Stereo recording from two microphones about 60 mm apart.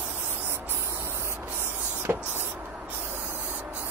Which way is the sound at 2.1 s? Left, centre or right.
Right.